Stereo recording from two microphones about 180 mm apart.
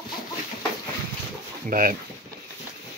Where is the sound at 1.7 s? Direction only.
50° right (ahead or behind).